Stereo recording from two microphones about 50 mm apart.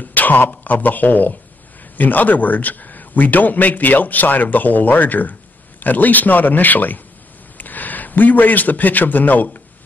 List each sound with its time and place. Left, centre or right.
0.0 s a man's voice: left